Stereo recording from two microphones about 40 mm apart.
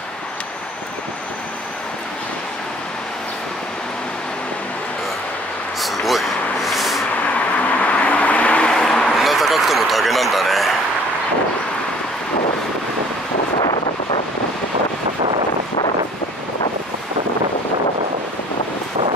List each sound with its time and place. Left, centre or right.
5.8 s vehicle: centre
7.2 s vehicle: left
8.7 s music: centre
9.1 s a sound: centre